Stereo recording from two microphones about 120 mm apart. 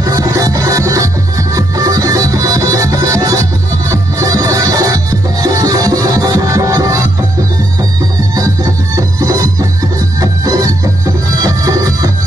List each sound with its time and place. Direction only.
0.0 s music: 30° right (ahead or behind)
8.4 s music: 30° right (ahead or behind)